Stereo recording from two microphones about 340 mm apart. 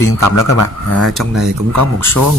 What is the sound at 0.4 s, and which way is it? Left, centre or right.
Speech, left.